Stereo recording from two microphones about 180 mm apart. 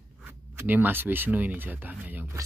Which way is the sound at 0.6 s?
10° right (ahead or behind).